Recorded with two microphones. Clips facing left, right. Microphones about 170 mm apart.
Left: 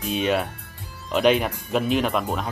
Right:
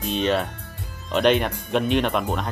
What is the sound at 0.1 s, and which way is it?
Speech, 5° left (ahead or behind).